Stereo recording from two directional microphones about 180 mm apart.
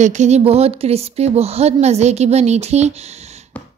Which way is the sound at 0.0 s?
40° right (ahead or behind).